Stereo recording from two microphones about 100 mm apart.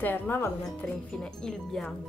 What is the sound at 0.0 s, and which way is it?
Speech, 20° left (ahead or behind).